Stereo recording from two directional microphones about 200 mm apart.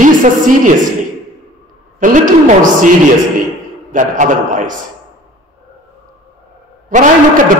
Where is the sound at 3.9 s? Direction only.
40° right (ahead or behind).